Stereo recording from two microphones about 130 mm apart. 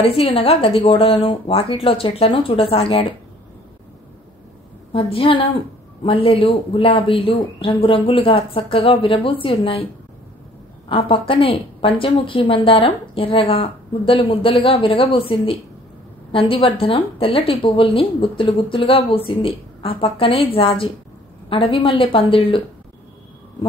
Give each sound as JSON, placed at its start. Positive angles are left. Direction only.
{"t": 0.0, "sound": "speech", "side_deg": 50}
{"t": 4.9, "sound": "speech", "side_deg": 45}
{"t": 10.9, "sound": "speech", "side_deg": 40}